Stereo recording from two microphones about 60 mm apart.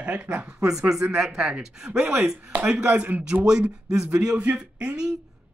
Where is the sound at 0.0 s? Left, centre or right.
Right.